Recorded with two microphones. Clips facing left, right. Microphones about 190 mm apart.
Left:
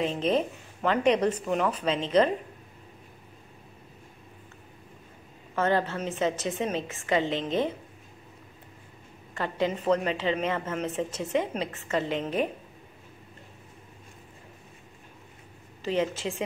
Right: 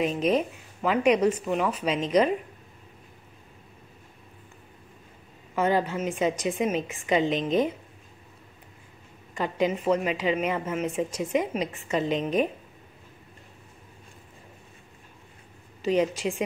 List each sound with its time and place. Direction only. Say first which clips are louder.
0.0 s a woman's voice: right 2 dB; 10° right (ahead or behind)
5.6 s a woman's voice: right 2 dB; 10° right (ahead or behind)
9.3 s a woman's voice: right 2 dB; 15° right (ahead or behind)
15.8 s a woman's voice: right 4 dB; 15° right (ahead or behind)